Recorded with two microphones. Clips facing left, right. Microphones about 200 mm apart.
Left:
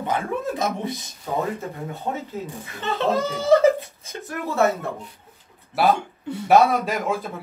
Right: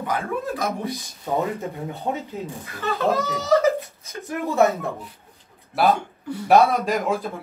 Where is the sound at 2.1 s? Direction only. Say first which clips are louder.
Right 2 dB; 10° right (ahead or behind).